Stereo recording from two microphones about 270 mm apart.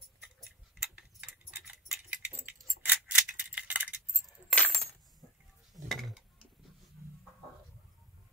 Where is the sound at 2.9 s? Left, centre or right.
Centre.